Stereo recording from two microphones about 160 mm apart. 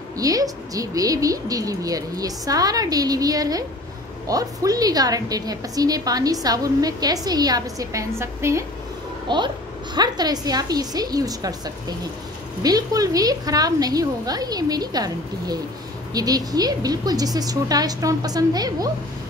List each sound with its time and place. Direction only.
0.2 s a woman's voice: 20° right (ahead or behind)
9.3 s a woman's voice: 30° right (ahead or behind)